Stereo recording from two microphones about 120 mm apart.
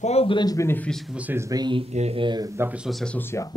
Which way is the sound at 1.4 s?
30° right (ahead or behind).